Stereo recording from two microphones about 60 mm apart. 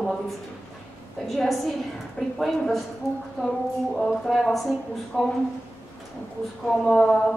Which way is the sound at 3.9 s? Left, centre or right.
Centre.